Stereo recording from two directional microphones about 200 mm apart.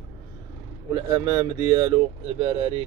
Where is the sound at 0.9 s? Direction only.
20° right (ahead or behind).